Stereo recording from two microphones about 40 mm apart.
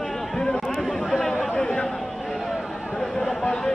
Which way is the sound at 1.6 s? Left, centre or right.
Left.